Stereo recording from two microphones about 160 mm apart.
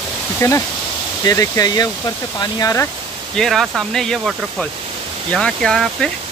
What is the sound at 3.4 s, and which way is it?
Speech, centre (ahead or behind).